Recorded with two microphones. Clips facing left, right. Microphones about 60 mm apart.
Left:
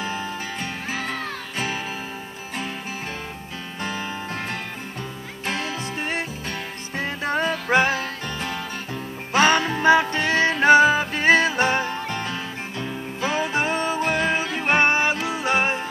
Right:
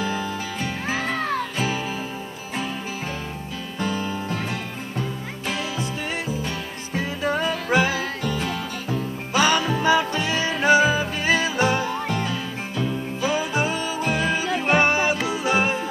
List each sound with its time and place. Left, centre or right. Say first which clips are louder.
0.0 s music: right 2 dB; left
3.8 s music: right 3 dB; left
7.0 s music: even; left